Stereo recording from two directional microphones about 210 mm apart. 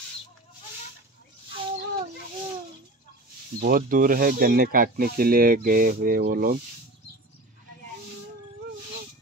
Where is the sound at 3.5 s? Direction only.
45° right (ahead or behind).